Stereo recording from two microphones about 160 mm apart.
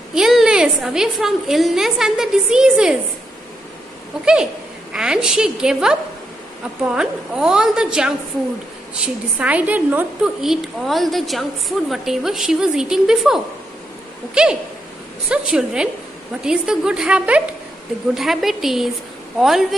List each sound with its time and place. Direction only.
0.1 s a woman's voice: centre (ahead or behind)
4.2 s a woman's voice: 5° right (ahead or behind)